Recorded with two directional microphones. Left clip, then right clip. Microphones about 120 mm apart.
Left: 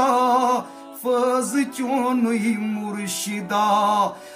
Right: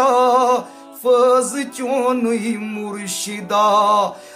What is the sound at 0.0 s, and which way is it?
Music, 30° right (ahead or behind).